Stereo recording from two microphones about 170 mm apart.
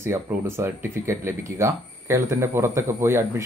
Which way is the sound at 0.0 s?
15° right (ahead or behind).